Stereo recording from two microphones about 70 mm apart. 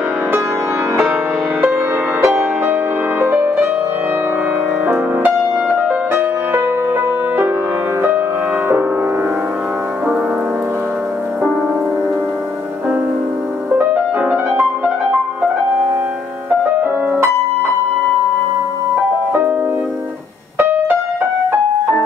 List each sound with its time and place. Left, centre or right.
2.2 s music: right
4.8 s music: right
13.7 s music: right